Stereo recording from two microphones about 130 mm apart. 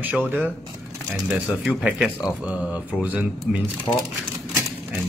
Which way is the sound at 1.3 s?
Centre (ahead or behind).